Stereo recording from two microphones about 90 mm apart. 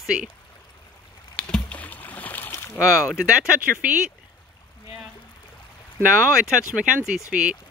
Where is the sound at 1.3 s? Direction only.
15° left (ahead or behind).